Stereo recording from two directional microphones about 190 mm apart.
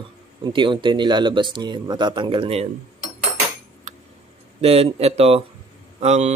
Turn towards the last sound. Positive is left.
turn(degrees=-35)  # may be behind; listen again after turning